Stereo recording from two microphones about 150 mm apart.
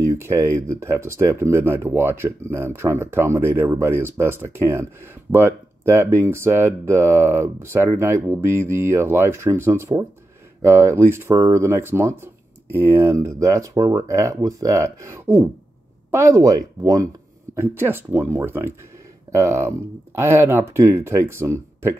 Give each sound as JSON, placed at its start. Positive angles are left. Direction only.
{"t": 0.1, "sound": "speech", "side_deg": -20}